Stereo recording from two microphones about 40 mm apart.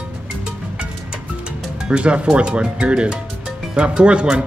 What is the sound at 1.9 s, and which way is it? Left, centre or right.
A man's voice, right.